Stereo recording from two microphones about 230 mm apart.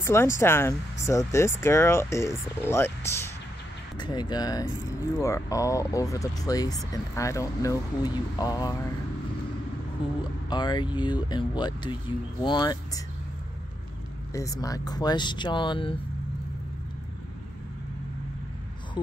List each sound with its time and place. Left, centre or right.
0.0 s speech: centre
10.5 s speech: centre
14.3 s speech: centre